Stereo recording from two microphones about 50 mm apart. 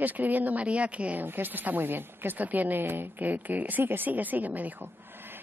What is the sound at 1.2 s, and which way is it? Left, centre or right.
A woman's voice, right.